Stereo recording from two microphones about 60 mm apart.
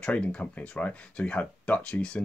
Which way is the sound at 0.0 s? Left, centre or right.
Centre.